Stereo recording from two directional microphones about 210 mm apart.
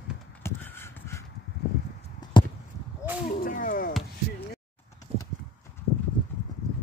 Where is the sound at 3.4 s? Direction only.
40° left (ahead or behind).